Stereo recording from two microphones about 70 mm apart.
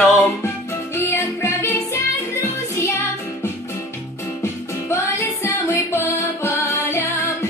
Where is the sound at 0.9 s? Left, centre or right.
Left.